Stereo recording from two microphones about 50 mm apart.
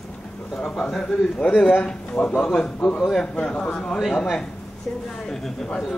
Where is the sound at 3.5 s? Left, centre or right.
Left.